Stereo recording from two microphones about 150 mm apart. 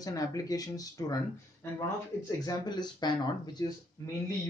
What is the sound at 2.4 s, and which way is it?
Speech, 30° left (ahead or behind).